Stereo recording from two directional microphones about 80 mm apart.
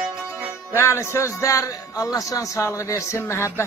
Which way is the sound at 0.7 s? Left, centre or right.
Left.